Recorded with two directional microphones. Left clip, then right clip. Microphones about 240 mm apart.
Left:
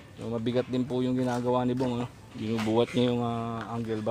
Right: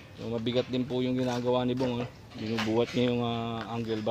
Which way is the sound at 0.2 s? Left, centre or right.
Left.